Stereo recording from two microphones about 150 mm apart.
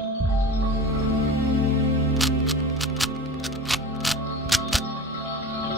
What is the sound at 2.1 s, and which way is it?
Music, centre (ahead or behind).